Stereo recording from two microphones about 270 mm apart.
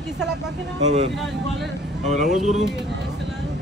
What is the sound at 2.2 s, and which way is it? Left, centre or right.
Speech, centre.